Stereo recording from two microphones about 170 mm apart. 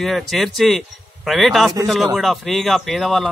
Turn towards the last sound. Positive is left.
turn(degrees=0)  # may be behind; listen again after turning